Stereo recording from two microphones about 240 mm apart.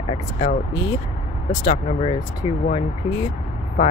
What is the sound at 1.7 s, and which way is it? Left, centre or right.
Speech, left.